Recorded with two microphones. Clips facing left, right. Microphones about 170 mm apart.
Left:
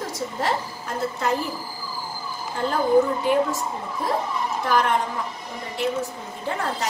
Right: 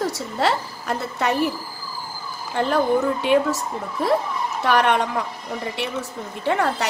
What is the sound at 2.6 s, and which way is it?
A woman's voice, 75° right (ahead or behind).